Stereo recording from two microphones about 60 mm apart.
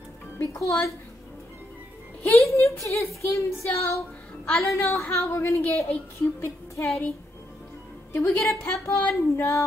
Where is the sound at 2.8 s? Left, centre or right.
Left.